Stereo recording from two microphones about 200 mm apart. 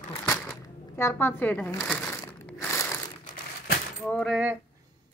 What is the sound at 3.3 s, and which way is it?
Crumpling, 45° left (ahead or behind).